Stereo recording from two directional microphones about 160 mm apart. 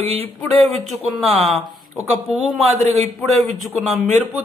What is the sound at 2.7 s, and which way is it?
Speech, 45° right (ahead or behind).